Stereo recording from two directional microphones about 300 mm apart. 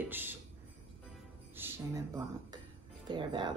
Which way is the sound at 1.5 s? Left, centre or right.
Centre.